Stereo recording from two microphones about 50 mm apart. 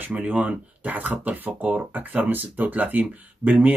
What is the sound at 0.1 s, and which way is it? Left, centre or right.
Speech, right.